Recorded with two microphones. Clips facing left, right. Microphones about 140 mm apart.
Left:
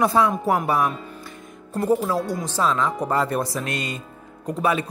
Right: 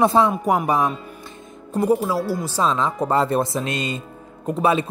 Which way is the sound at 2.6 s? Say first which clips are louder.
Right 1 dB; 25° right (ahead or behind).